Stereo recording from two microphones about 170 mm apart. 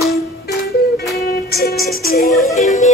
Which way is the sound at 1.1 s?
65° left (ahead or behind).